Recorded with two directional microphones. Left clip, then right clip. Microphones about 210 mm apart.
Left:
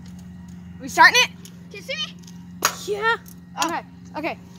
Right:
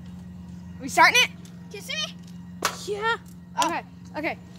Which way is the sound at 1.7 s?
30° right (ahead or behind).